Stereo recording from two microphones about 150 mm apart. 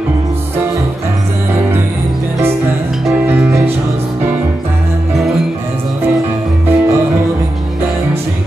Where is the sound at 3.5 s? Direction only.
20° right (ahead or behind).